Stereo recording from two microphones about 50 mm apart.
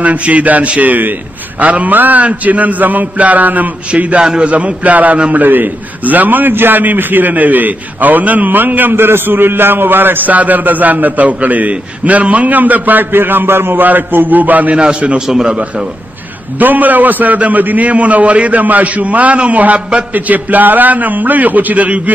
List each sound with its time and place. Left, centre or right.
0.0 s a man's voice: right
14.8 s a man's voice: right
15.5 s a man's voice: right
16.5 s a man's voice: right